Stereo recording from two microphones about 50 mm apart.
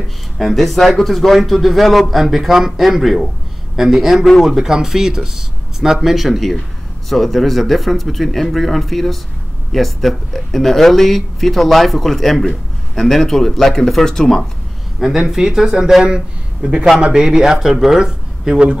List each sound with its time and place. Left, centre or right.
0.4 s speech: centre
15.0 s speech: centre